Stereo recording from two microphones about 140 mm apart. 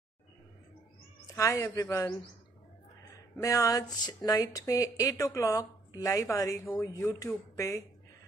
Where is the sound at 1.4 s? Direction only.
20° left (ahead or behind).